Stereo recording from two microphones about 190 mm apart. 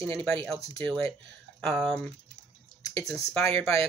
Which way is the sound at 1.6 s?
5° left (ahead or behind).